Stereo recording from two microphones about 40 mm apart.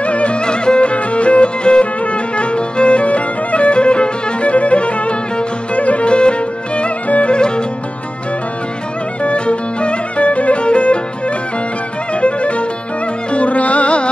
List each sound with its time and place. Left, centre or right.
0.0 s music: left
9.2 s music: left